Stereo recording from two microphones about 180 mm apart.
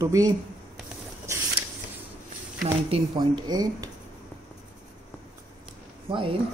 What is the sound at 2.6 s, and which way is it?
Speech, 30° right (ahead or behind).